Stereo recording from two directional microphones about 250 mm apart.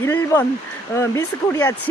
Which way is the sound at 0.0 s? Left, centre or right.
Centre.